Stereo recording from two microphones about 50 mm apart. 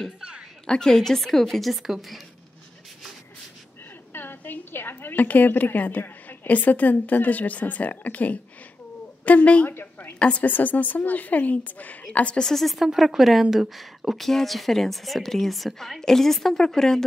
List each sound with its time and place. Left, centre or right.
0.7 s a woman's voice: centre
4.1 s a woman's voice: left
9.7 s a woman's voice: left
10.1 s a woman's voice: left
12.4 s a woman's voice: centre